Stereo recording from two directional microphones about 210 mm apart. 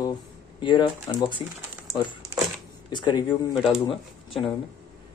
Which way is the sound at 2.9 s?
20° left (ahead or behind).